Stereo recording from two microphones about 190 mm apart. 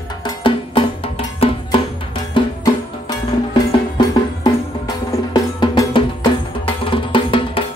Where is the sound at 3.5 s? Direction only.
25° left (ahead or behind).